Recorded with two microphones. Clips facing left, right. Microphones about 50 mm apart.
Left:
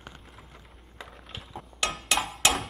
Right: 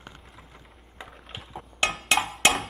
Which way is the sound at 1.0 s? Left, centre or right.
Right.